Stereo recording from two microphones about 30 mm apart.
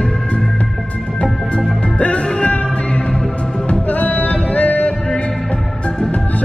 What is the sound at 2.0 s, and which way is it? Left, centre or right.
Music, left.